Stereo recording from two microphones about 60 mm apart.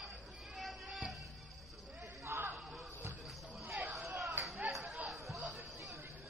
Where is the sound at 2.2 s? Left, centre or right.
Right.